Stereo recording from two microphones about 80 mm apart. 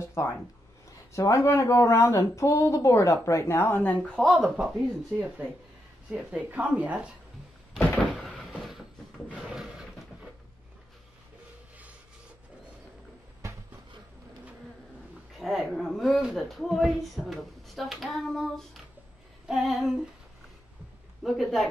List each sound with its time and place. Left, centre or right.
0.2 s speech: left
4.1 s speech: centre
6.0 s speech: centre
7.8 s door: left
8.2 s cupboard open or close: centre
8.5 s a sound: centre
9.3 s drawer open or close: centre
15.3 s speech: centre
21.2 s speech: centre